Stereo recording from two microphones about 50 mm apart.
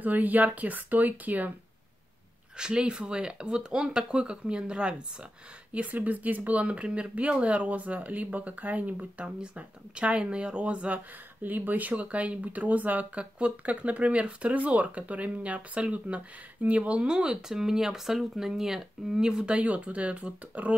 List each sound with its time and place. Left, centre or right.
0.0 s speech: right
2.5 s speech: centre
5.7 s speech: right
11.4 s speech: right